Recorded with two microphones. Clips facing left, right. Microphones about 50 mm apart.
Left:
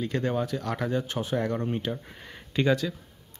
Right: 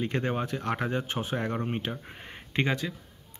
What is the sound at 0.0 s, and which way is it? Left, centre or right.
Speech, right.